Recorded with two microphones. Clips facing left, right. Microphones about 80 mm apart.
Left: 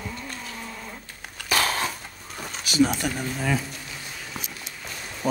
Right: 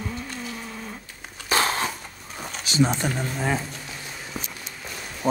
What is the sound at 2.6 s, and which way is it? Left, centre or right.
Speech, right.